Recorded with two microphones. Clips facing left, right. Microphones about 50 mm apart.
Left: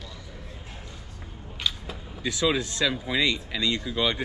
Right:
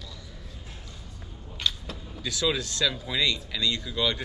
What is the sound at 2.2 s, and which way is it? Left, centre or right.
Speech, left.